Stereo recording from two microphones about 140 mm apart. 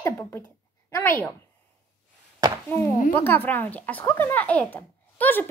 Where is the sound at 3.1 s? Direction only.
15° left (ahead or behind).